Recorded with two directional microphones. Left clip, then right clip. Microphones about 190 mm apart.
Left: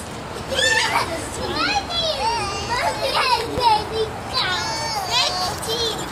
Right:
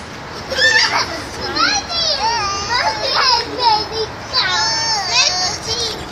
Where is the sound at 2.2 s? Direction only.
5° right (ahead or behind).